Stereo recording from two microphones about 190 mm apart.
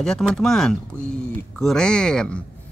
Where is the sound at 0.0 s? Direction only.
Centre (ahead or behind).